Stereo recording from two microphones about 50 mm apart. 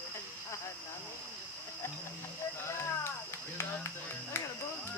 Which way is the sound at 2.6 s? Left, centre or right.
Left.